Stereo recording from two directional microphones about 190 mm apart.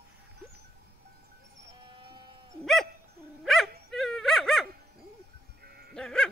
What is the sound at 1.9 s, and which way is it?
Livestock, 25° right (ahead or behind).